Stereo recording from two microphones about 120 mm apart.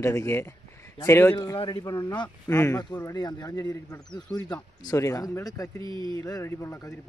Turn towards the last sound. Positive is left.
turn(degrees=20)  # may be behind; listen again after turning